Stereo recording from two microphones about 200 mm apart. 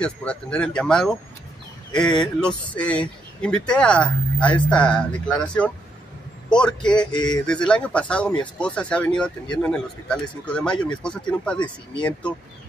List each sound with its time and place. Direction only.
0.0 s speech: 5° left (ahead or behind)
7.1 s a sound: 20° left (ahead or behind)
7.4 s speech: 5° left (ahead or behind)